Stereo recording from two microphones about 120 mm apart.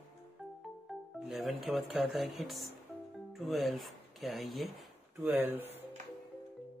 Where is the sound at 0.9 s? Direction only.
Centre (ahead or behind).